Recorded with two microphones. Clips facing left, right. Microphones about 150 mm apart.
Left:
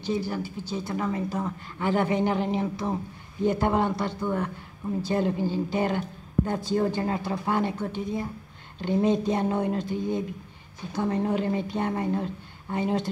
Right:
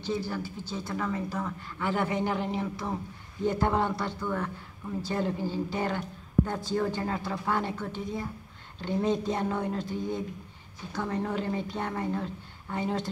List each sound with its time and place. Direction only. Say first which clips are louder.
0.0 s a man's voice: left 3 dB; 15° left (ahead or behind)